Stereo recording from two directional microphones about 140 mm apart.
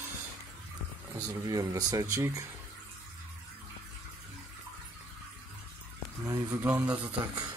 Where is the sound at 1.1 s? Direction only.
20° right (ahead or behind).